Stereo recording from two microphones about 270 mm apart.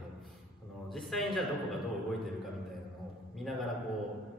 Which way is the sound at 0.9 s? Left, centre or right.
Centre.